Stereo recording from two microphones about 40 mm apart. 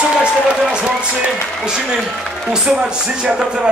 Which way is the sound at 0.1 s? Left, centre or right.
Right.